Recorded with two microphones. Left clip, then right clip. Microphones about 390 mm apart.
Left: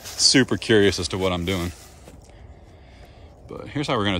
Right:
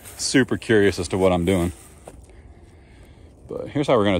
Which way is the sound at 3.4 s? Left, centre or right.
Centre.